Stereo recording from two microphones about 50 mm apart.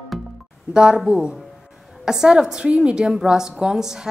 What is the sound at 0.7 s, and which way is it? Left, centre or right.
A woman's voice, centre.